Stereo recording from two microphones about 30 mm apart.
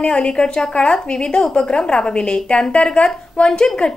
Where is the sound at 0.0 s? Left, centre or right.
Left.